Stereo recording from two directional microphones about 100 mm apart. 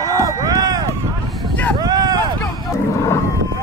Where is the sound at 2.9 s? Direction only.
30° left (ahead or behind).